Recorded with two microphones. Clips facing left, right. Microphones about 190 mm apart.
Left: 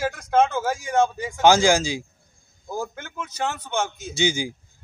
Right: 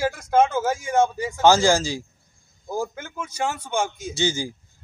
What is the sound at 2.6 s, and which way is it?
A man's voice, 10° right (ahead or behind).